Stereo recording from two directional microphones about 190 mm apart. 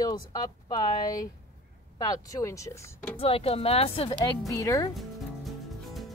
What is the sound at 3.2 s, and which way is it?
Speech, 30° left (ahead or behind).